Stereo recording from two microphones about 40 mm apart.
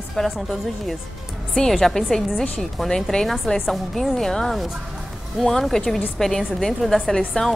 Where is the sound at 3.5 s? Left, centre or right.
Left.